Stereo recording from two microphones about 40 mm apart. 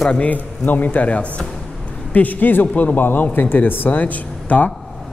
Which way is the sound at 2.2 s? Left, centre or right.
Left.